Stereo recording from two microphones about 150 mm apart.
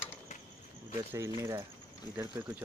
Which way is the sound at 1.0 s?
20° right (ahead or behind).